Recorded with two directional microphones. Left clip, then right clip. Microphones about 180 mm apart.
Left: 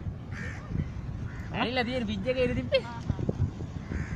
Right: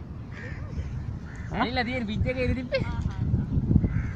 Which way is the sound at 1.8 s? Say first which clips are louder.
Right 1 dB; centre (ahead or behind).